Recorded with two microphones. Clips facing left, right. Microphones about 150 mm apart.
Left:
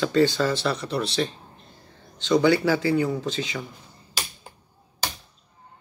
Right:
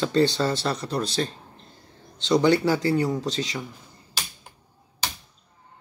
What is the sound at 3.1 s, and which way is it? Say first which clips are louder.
Speech: right 1 dB; 35° right (ahead or behind).